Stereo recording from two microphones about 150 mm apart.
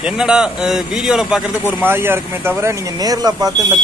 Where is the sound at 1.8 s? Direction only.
15° right (ahead or behind).